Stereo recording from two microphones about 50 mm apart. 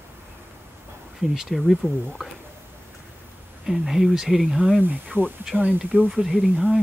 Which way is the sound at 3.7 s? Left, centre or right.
Centre.